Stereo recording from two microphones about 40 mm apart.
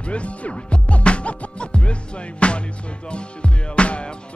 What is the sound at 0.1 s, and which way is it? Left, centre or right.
Music, left.